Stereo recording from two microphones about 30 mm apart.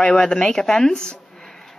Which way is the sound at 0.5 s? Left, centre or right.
Centre.